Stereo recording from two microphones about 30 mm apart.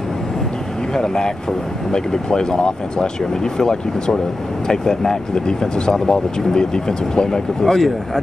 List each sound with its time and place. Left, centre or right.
0.9 s speech: left
7.6 s speech: centre